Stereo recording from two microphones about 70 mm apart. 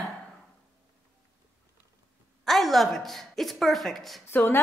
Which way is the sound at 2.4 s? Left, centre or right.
Centre.